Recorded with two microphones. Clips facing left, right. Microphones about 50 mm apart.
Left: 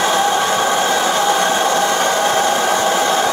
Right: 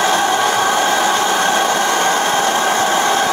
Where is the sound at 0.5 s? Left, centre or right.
Centre.